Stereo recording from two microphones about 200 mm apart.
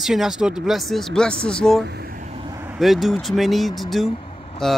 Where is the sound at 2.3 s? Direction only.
15° right (ahead or behind).